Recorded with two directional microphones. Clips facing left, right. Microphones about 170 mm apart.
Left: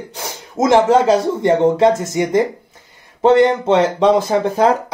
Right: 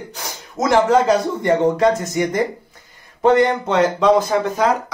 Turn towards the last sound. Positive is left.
turn(degrees=30)  # may be behind; listen again after turning